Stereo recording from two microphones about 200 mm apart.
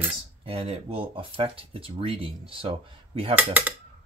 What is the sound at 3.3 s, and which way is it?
Speech, 10° right (ahead or behind).